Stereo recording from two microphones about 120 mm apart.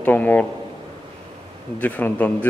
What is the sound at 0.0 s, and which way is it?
Speech, 15° left (ahead or behind).